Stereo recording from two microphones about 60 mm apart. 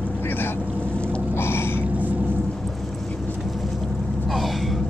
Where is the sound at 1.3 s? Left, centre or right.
Left.